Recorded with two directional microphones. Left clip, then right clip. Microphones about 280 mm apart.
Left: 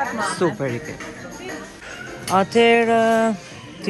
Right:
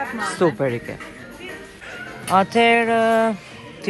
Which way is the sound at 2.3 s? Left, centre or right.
Centre.